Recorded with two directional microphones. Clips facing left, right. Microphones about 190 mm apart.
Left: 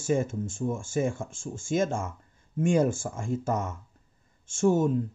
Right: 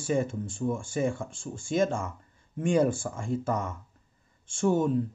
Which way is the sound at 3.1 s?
15° left (ahead or behind).